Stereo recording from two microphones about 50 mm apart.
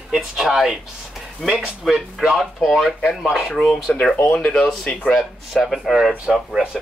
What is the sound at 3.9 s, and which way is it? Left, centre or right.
Speech, left.